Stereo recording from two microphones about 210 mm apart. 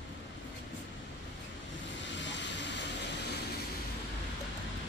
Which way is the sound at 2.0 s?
60° left (ahead or behind).